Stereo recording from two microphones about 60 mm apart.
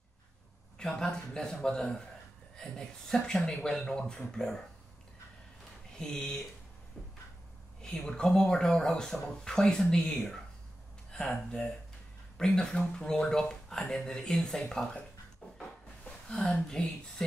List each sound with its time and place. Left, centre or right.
0.7 s speech: centre
5.9 s speech: centre
7.8 s speech: centre
15.4 s wood: left
16.1 s a sound: centre
16.8 s speech: centre